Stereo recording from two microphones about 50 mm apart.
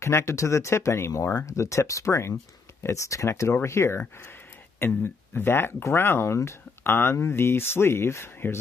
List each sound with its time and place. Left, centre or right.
0.0 s speech: left
3.6 s speech: left
4.7 s speech: left
6.8 s speech: left